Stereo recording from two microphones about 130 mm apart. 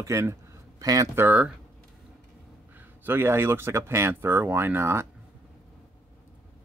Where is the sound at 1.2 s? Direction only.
10° right (ahead or behind).